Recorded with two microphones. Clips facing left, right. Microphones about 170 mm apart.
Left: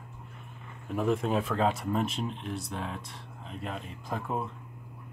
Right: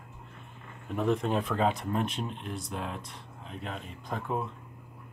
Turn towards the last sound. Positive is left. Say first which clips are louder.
# even
turn(degrees=0)  # may be behind; listen again after turning